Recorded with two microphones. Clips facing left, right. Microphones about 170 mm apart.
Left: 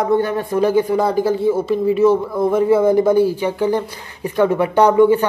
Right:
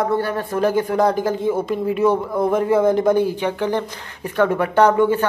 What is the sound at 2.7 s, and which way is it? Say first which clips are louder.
Speech: left 3 dB; 10° left (ahead or behind).